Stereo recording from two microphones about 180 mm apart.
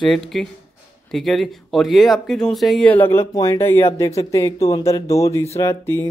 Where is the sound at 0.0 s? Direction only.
Centre (ahead or behind).